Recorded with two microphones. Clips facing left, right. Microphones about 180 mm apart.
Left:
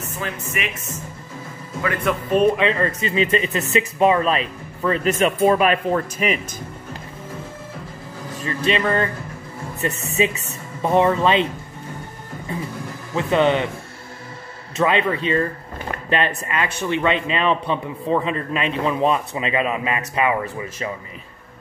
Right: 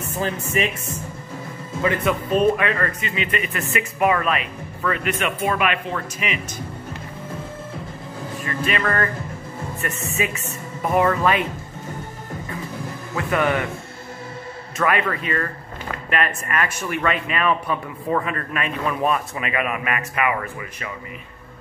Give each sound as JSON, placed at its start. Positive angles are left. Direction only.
{"t": 0.2, "sound": "speech", "side_deg": -35}
{"t": 2.1, "sound": "speech", "side_deg": 0}
{"t": 2.5, "sound": "speech", "side_deg": 25}
{"t": 8.6, "sound": "speech", "side_deg": 25}
{"t": 13.1, "sound": "speech", "side_deg": 25}
{"t": 14.8, "sound": "speech", "side_deg": 20}